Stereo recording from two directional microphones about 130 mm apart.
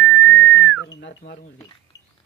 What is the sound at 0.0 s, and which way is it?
Whistling, 15° left (ahead or behind).